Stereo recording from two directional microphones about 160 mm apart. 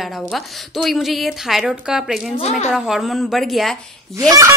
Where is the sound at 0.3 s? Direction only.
Centre (ahead or behind).